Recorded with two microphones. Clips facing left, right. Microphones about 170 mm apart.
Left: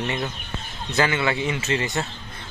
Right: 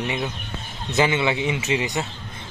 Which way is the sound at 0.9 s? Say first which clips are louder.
Right 2 dB; 20° right (ahead or behind).